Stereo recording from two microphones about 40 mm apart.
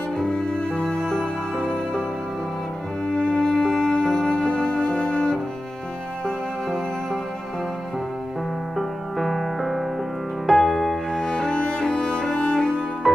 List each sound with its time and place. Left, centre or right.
0.2 s music: left
3.1 s music: left
6.2 s music: centre
8.7 s music: centre
11.1 s music: centre
13.0 s music: centre